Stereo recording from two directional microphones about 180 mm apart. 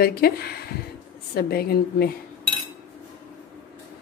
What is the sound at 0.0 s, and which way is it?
A woman's voice, 60° left (ahead or behind).